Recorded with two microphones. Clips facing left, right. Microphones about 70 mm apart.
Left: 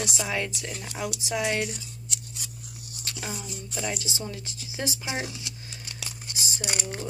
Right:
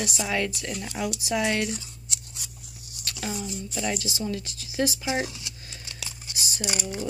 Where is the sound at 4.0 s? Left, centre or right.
Left.